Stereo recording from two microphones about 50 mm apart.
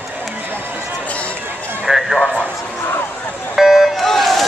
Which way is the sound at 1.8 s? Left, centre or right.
Centre.